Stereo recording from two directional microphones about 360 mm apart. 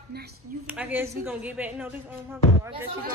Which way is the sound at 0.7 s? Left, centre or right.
Centre.